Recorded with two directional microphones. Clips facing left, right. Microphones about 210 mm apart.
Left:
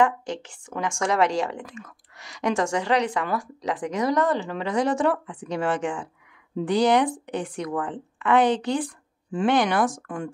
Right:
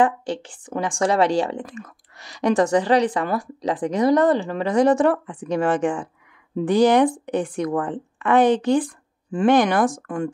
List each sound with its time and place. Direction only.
0.0 s speech: 30° right (ahead or behind); by 10.3 s 50° right (ahead or behind)